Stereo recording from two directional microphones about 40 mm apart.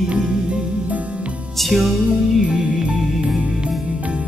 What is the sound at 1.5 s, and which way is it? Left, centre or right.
Music, centre.